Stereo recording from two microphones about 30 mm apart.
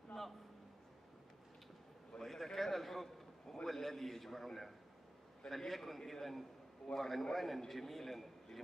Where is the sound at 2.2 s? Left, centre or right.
Centre.